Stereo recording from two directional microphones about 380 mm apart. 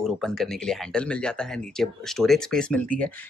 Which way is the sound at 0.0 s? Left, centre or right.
Centre.